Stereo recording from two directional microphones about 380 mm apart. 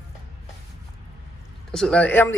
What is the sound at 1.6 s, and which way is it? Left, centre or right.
Speech, centre.